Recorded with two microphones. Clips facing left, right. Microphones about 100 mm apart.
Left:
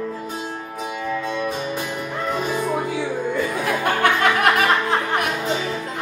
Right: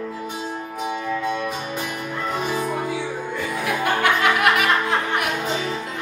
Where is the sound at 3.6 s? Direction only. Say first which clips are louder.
Even; 40° left (ahead or behind).